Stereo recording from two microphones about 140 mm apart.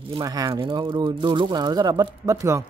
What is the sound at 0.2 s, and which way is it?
Speech, 25° right (ahead or behind).